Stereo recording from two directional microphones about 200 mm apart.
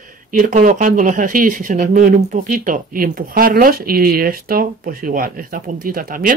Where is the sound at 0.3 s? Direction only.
45° right (ahead or behind).